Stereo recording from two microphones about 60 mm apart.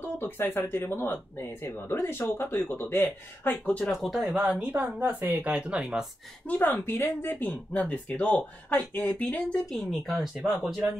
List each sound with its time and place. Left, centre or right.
0.2 s speech: left
3.9 s speech: centre
4.4 s speech: right
5.6 s speech: centre
6.4 s speech: left
9.7 s speech: centre